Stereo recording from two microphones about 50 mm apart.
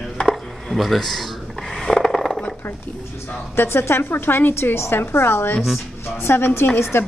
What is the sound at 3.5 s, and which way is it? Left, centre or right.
A woman's voice, left.